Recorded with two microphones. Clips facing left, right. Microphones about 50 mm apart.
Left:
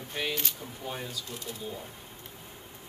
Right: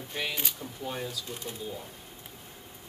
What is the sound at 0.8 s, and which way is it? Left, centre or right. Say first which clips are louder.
Speech: right 2 dB; centre.